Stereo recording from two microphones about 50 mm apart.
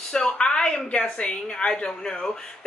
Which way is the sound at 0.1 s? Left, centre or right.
Centre.